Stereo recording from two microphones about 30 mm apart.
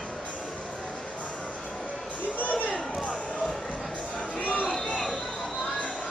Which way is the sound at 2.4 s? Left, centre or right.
Left.